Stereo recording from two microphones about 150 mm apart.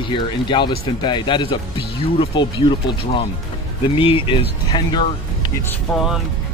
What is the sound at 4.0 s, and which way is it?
Speech, 35° left (ahead or behind).